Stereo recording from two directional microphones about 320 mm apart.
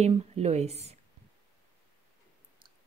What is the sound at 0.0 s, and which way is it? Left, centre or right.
Speech, centre.